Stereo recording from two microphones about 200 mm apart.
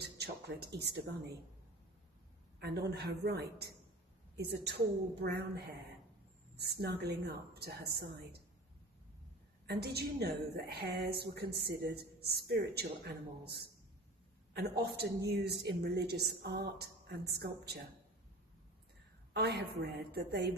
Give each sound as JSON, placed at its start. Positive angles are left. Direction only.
{"t": 0.0, "sound": "speech", "side_deg": -55}
{"t": 2.6, "sound": "a woman's voice", "side_deg": -55}
{"t": 9.7, "sound": "a woman's voice", "side_deg": -50}
{"t": 14.5, "sound": "a woman's voice", "side_deg": -55}
{"t": 19.3, "sound": "a woman's voice", "side_deg": -55}